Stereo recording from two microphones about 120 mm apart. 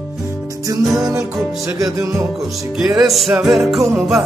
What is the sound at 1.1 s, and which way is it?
Music, 25° right (ahead or behind).